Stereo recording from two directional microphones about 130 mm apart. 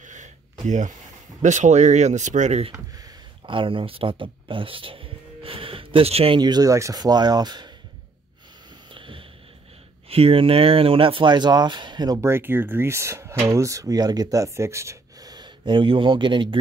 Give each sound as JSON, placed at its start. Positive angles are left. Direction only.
{"t": 0.0, "sound": "gasp", "side_deg": -70}
{"t": 1.4, "sound": "speech", "side_deg": -70}
{"t": 3.4, "sound": "speech", "side_deg": -40}
{"t": 8.9, "sound": "a sound", "side_deg": -40}
{"t": 10.0, "sound": "speech", "side_deg": -45}
{"t": 12.2, "sound": "speech", "side_deg": -20}